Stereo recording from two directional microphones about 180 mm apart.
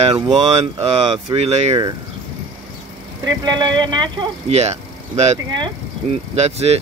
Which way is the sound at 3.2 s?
25° right (ahead or behind).